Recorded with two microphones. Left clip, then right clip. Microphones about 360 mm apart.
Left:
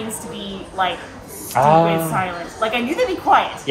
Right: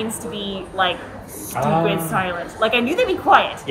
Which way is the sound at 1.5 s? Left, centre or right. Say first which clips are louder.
Left 6 dB; centre.